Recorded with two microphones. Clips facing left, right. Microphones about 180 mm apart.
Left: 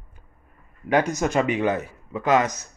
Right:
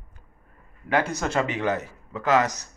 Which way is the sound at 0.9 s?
15° left (ahead or behind).